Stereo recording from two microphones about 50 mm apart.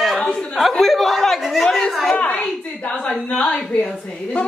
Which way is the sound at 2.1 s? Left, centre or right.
Left.